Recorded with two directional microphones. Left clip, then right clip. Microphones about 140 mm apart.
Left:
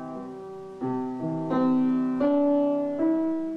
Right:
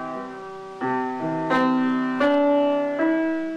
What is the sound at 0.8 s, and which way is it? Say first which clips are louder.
Music: right 6 dB; 40° right (ahead or behind).